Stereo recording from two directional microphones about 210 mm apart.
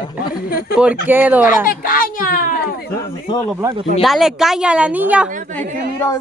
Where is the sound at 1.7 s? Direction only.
45° left (ahead or behind).